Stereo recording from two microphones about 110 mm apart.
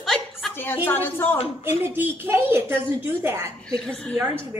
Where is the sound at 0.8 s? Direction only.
20° left (ahead or behind).